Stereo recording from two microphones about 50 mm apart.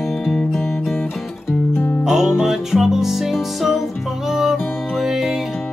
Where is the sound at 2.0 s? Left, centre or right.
Centre.